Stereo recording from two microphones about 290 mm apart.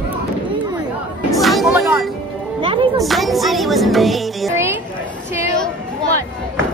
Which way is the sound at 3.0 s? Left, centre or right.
Centre.